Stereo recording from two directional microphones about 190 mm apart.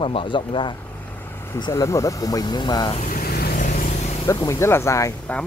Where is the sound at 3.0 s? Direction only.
50° left (ahead or behind).